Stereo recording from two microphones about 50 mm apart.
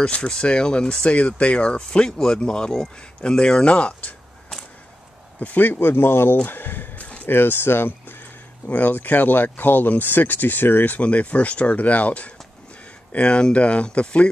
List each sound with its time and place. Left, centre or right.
0.1 s speech: centre
5.4 s speech: left
6.4 s a sound: left
7.2 s speech: left
8.6 s speech: left
11.0 s speech: left